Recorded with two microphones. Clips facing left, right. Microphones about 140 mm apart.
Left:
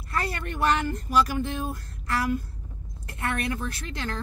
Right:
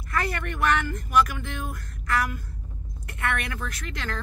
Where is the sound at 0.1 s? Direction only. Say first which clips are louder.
Right 1 dB; 30° left (ahead or behind).